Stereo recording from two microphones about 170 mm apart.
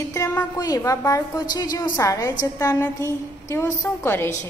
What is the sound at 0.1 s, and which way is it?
A woman's voice, 15° left (ahead or behind).